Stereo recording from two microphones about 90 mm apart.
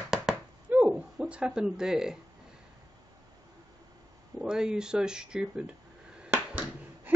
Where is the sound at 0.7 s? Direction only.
15° right (ahead or behind).